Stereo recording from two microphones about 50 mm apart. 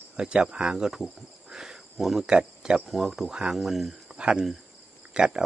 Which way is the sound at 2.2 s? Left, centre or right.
Centre.